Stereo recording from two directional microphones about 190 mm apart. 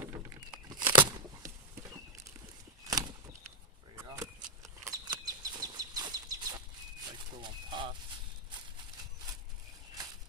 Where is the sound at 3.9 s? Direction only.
15° right (ahead or behind).